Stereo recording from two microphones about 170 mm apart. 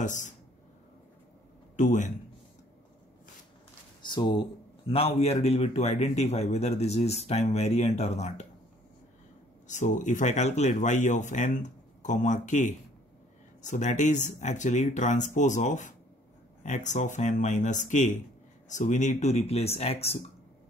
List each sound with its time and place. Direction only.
0.0 s speech: 45° left (ahead or behind)
1.8 s speech: 45° left (ahead or behind)
4.0 s speech: 25° left (ahead or behind)
9.7 s speech: 45° left (ahead or behind)